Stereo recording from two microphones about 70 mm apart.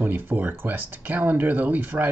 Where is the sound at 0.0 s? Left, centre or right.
Right.